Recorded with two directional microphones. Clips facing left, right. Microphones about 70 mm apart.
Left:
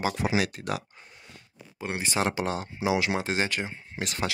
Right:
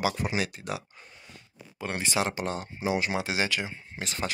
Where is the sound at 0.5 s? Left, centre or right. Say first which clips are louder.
Left 3 dB; left.